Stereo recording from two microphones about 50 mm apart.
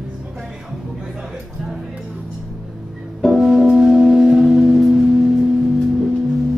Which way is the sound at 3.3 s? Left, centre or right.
Centre.